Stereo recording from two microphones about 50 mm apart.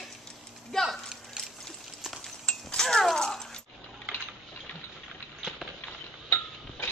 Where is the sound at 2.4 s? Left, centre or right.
Centre.